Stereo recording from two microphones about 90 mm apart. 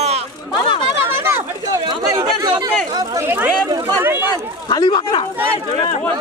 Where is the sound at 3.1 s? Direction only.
25° right (ahead or behind).